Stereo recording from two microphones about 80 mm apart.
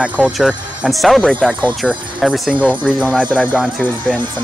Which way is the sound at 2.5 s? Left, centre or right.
Centre.